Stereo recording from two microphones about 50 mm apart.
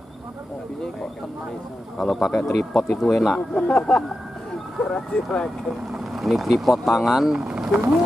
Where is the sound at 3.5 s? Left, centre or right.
Centre.